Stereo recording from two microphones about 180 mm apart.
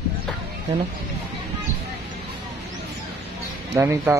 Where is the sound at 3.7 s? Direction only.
15° right (ahead or behind).